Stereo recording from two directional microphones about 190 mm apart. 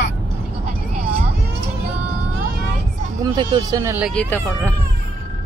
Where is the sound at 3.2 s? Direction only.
20° right (ahead or behind).